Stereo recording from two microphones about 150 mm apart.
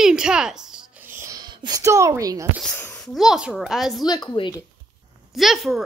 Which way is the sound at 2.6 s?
15° left (ahead or behind).